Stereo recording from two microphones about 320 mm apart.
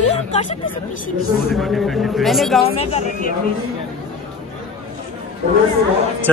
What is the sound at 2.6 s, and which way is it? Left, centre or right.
Speech, centre.